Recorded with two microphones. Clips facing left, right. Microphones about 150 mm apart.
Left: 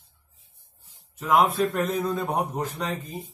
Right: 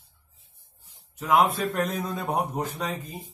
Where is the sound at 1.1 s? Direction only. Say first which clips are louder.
Left 1 dB; centre (ahead or behind).